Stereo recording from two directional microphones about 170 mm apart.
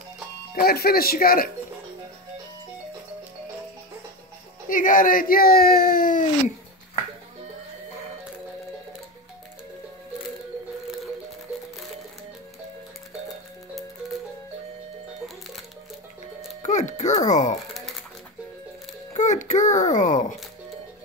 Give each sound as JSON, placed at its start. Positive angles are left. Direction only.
{"t": 0.6, "sound": "speech", "side_deg": 65}
{"t": 4.6, "sound": "speech", "side_deg": 55}
{"t": 16.6, "sound": "music", "side_deg": 45}
{"t": 17.3, "sound": "speech", "side_deg": 45}
{"t": 19.1, "sound": "a sound", "side_deg": 45}